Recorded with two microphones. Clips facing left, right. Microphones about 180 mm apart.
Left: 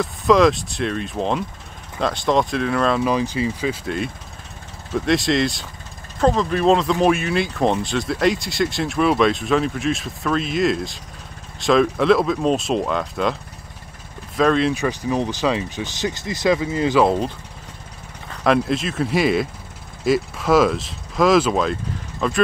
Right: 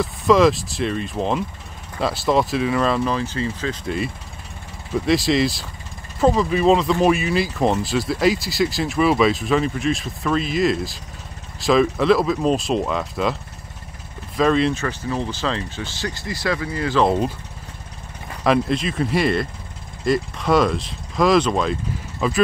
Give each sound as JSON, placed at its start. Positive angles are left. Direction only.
{"t": 0.0, "sound": "speech", "side_deg": 0}
{"t": 3.1, "sound": "speech", "side_deg": 10}
{"t": 3.8, "sound": "speech", "side_deg": 0}
{"t": 14.7, "sound": "speech", "side_deg": 15}
{"t": 17.0, "sound": "speech", "side_deg": -5}
{"t": 18.4, "sound": "speech", "side_deg": 0}